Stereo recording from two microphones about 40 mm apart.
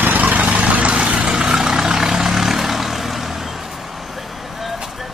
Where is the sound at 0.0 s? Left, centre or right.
Right.